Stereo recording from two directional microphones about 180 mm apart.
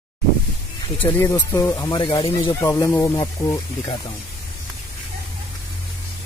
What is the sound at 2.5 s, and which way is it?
Speech, 15° left (ahead or behind).